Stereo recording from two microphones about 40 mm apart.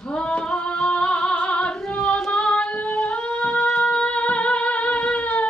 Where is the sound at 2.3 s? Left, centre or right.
Left.